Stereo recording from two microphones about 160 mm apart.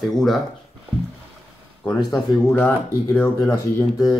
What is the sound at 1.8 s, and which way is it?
Speech, 20° left (ahead or behind).